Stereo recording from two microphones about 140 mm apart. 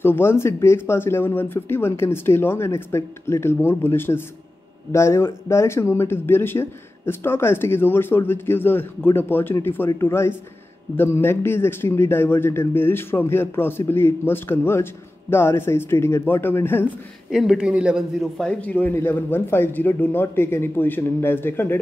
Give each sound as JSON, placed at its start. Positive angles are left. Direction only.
{"t": 0.0, "sound": "a man's voice", "side_deg": 15}
{"t": 17.3, "sound": "a man's voice", "side_deg": -5}